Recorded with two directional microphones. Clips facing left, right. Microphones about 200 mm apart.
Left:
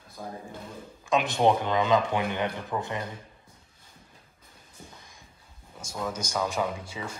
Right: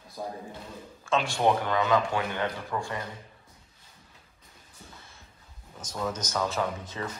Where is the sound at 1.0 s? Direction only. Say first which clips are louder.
Left 2 dB; 20° left (ahead or behind).